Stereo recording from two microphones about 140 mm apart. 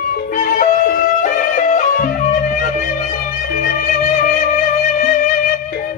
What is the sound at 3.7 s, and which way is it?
Music, 75° left (ahead or behind).